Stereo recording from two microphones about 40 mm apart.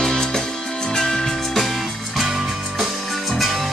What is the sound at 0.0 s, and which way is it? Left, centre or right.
Music, centre.